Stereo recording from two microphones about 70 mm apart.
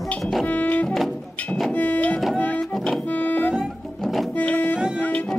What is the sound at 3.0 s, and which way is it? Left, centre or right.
Music, left.